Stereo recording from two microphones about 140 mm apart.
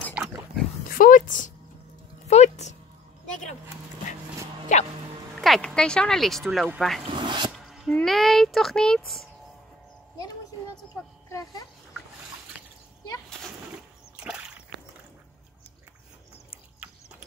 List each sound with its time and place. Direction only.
0.8 s speech: 90° left; by 1.5 s 70° left (ahead or behind)
2.2 s a sound: 55° left (ahead or behind)
4.7 s music: 60° left (ahead or behind)
5.4 s a sound: centre (ahead or behind)
5.8 s speech: 5° left (ahead or behind)
7.1 s zipper: 35° right (ahead or behind)
7.5 s speech: centre (ahead or behind)
11.2 s speech: 20° left (ahead or behind)
14.1 s a sound: 5° right (ahead or behind)